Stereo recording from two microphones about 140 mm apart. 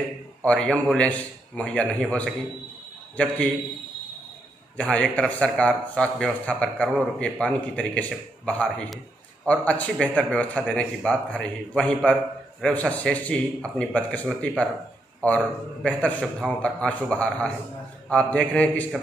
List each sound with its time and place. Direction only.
0.4 s a man's voice: 5° left (ahead or behind)
4.7 s a man's voice: 5° left (ahead or behind)